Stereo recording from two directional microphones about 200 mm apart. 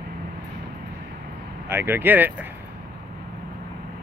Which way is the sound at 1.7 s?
10° right (ahead or behind).